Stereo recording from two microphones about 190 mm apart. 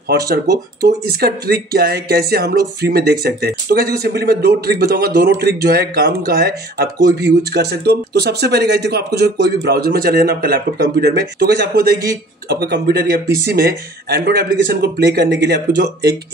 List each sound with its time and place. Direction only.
0.1 s speech: 55° right (ahead or behind)